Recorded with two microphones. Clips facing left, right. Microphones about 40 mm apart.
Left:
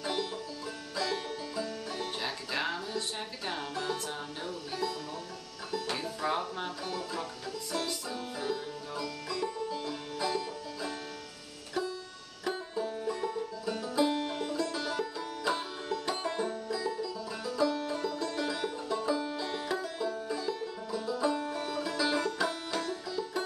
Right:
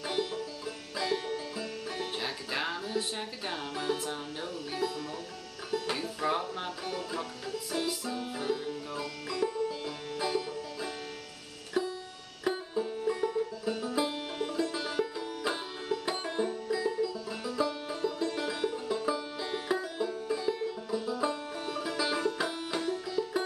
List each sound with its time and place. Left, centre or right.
0.0 s music: centre
1.9 s music: centre
14.5 s music: centre